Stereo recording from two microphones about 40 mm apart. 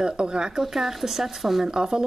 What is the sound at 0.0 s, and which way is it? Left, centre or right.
Speech, right.